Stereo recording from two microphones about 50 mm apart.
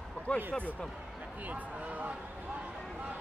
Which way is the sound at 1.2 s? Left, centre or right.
Right.